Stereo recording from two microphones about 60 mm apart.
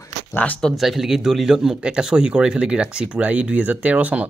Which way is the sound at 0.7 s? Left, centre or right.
Centre.